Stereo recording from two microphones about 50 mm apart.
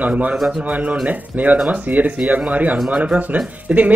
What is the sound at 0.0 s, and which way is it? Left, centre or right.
Speech, right.